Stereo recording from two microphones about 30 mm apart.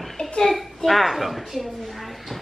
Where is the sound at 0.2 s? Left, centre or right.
Left.